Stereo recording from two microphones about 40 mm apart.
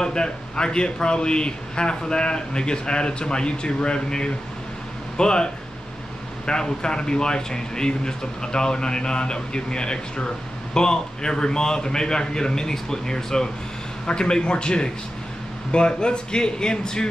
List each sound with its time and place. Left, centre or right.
0.0 s speech: centre